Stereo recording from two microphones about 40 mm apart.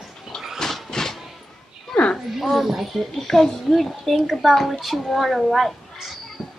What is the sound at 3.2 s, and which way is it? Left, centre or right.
Speech, centre.